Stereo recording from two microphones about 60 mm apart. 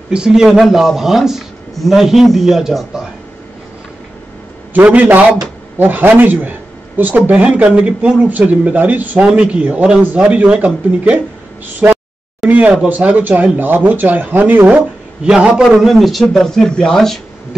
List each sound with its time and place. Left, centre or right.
0.1 s speech: centre
4.7 s speech: right
9.3 s speech: centre
11.8 s a sound: right
12.4 s speech: right
15.2 s speech: centre